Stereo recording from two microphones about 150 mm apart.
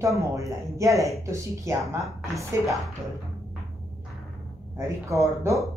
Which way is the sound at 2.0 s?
Centre (ahead or behind).